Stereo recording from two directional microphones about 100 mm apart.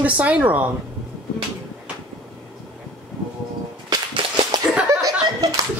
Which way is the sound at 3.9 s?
45° right (ahead or behind).